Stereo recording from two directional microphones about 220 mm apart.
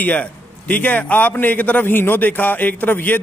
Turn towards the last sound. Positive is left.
turn(degrees=10)  # may be behind; listen again after turning